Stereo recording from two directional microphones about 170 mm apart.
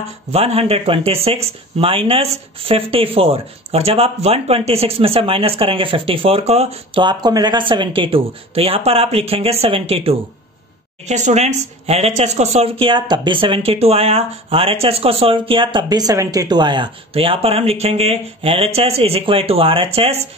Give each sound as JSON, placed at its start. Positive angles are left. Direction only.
{"t": 0.3, "sound": "speech", "side_deg": -35}